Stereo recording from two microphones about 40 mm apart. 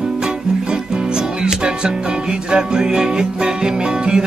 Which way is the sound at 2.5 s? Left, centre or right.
Right.